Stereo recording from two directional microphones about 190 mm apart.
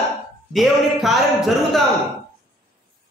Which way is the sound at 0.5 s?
Centre (ahead or behind).